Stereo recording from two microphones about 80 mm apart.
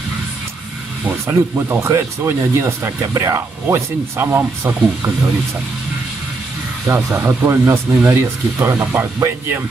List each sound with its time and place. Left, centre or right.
1.2 s speech: right
7.2 s speech: right